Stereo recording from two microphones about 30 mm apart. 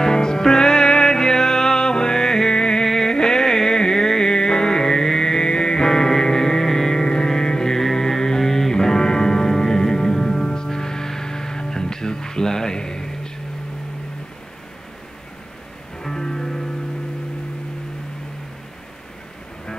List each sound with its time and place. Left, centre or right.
0.0 s music: left
2.8 s music: centre
16.0 s music: centre